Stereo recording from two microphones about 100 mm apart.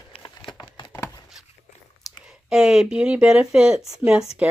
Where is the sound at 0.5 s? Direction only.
50° left (ahead or behind).